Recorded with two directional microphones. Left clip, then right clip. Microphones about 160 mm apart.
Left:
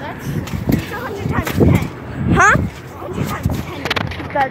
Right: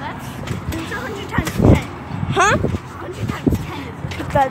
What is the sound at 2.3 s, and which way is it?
Speech, 15° right (ahead or behind).